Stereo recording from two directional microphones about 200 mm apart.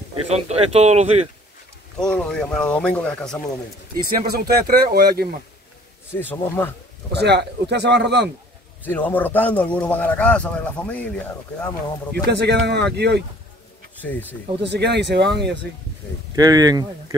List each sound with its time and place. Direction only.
0.3 s speech: 30° right (ahead or behind)
2.0 s speech: 5° left (ahead or behind)
4.1 s speech: 50° right (ahead or behind)
6.1 s speech: 10° left (ahead or behind)
7.1 s speech: 55° right (ahead or behind)
8.8 s speech: 10° left (ahead or behind)
12.3 s speech: 55° right (ahead or behind)
14.6 s speech: 60° right (ahead or behind)
16.3 s speech: 20° right (ahead or behind)